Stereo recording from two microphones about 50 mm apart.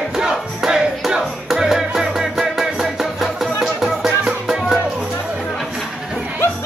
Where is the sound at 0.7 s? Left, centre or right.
Centre.